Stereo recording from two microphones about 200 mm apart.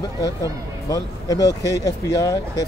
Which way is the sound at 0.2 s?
15° left (ahead or behind).